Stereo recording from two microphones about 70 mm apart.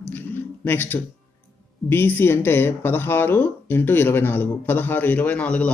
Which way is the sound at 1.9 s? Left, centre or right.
Left.